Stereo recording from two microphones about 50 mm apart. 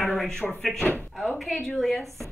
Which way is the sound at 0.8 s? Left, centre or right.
Left.